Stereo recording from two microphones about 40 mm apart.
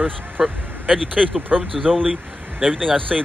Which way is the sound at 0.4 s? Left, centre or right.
Centre.